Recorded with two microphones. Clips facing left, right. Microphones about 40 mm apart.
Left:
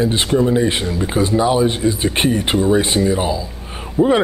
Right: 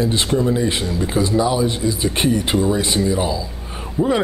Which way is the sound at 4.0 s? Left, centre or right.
Centre.